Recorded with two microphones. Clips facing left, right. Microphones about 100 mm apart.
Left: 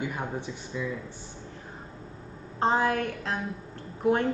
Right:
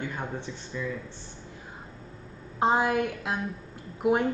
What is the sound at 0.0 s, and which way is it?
Speech, 10° left (ahead or behind).